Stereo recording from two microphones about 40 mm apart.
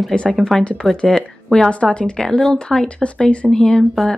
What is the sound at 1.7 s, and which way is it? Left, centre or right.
Speech, left.